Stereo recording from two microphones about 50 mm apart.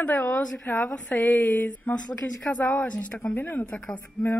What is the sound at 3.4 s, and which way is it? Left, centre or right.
Speech, left.